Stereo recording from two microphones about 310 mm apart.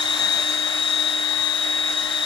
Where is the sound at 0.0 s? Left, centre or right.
Centre.